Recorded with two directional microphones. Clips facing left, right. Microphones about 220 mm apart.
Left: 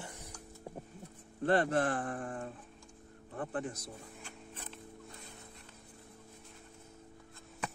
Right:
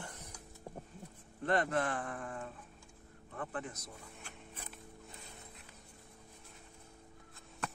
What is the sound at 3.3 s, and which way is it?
Speech, 30° left (ahead or behind).